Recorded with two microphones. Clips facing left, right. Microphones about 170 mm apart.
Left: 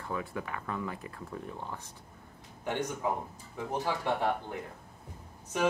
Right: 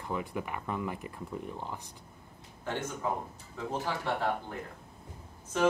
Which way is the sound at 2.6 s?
15° left (ahead or behind).